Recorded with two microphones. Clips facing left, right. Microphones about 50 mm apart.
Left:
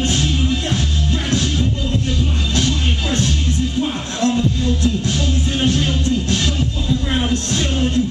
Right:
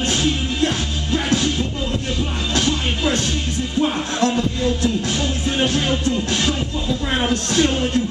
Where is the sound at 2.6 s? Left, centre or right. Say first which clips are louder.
Right 1 dB; centre.